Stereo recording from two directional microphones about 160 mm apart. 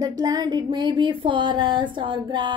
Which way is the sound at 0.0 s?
25° right (ahead or behind).